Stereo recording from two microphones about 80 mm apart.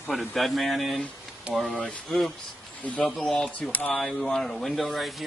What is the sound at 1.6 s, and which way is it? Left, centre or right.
Speech, centre.